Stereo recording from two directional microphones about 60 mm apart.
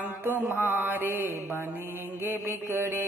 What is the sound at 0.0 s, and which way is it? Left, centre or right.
Mantra, right.